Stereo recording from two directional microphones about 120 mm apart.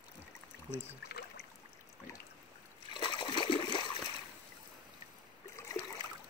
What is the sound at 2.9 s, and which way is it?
Splash, 40° left (ahead or behind).